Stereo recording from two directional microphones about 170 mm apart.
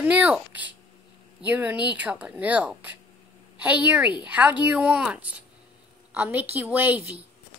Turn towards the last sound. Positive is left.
turn(degrees=-10)  # may be behind; listen again after turning